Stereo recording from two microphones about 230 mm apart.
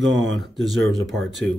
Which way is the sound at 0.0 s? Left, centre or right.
Right.